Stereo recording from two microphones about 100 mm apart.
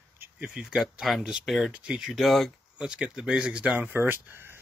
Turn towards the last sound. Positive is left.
turn(degrees=-20)  # may be behind; listen again after turning